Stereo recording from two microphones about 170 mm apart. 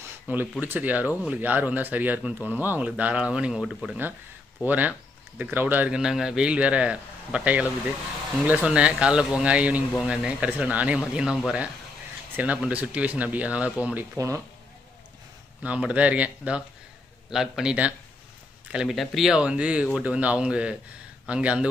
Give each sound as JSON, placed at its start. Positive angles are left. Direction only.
{"t": 0.3, "sound": "speech", "side_deg": -10}
{"t": 14.1, "sound": "speech", "side_deg": -15}
{"t": 15.6, "sound": "speech", "side_deg": -5}